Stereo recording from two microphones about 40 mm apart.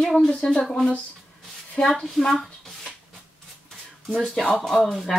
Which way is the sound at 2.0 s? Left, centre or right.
Centre.